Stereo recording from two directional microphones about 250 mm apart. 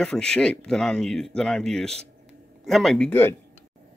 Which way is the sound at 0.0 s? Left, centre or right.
Centre.